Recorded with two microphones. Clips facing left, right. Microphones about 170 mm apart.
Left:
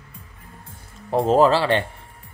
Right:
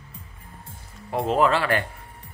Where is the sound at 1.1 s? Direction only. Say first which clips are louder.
Left 5 dB; 35° left (ahead or behind).